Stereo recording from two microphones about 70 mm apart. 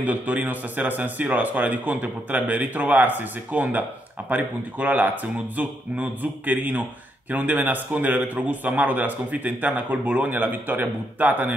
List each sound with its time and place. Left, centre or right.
0.0 s a man's voice: right